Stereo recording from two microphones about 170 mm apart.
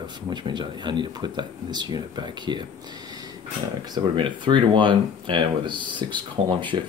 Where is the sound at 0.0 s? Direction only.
25° right (ahead or behind).